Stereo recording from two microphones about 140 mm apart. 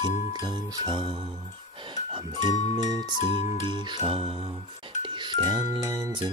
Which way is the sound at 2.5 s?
55° left (ahead or behind).